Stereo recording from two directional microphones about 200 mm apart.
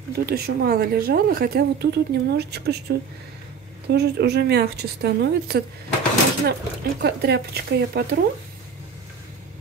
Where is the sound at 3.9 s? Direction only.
55° right (ahead or behind).